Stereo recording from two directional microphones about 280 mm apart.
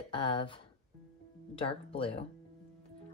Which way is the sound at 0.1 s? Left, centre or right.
Centre.